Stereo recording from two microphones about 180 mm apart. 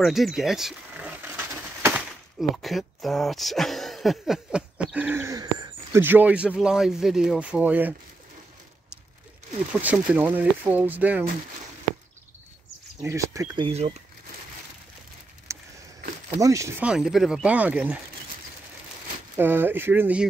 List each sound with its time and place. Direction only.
0.0 s a sound: centre (ahead or behind)
2.5 s speech: centre (ahead or behind); by 6.0 s 20° right (ahead or behind)
6.0 s speech: 10° right (ahead or behind)
9.7 s speech: 10° right (ahead or behind)
13.0 s speech: 15° right (ahead or behind)
13.7 s speech: 35° right (ahead or behind)
15.5 s a sound: 15° right (ahead or behind)
16.3 s speech: 20° right (ahead or behind)
16.8 s speech: 5° right (ahead or behind)
19.3 s speech: 10° right (ahead or behind)